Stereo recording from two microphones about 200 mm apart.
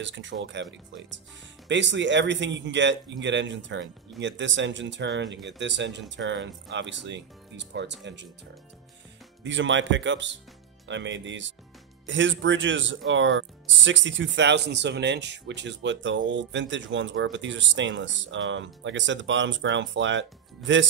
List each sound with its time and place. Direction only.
0.0 s speech: 65° right (ahead or behind)
9.4 s speech: 65° right (ahead or behind)